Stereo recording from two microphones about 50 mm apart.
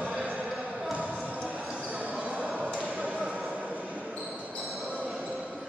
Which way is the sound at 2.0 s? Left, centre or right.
Centre.